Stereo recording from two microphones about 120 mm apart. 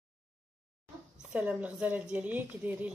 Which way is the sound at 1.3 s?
10° right (ahead or behind).